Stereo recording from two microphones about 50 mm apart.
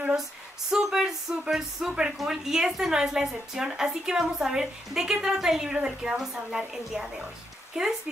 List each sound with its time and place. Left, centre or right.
0.7 s a woman's voice: centre